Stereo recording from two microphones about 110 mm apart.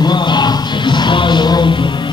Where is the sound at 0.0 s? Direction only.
40° left (ahead or behind).